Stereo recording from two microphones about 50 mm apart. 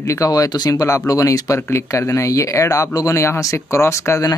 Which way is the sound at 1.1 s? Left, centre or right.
Left.